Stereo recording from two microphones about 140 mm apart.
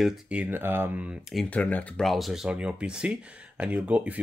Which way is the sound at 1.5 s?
10° left (ahead or behind).